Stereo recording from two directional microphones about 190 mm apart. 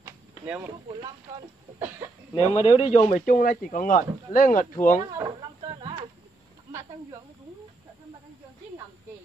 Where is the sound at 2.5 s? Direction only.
30° left (ahead or behind).